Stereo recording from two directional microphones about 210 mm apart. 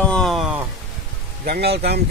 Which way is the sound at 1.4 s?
50° right (ahead or behind).